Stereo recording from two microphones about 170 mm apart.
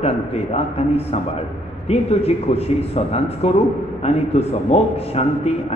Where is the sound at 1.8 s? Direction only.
35° left (ahead or behind).